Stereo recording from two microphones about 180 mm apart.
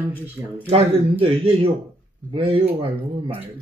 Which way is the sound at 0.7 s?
30° right (ahead or behind).